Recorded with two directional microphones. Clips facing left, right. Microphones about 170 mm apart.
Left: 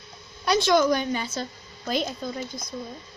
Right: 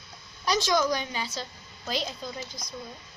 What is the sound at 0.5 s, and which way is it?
A woman's voice, 60° left (ahead or behind).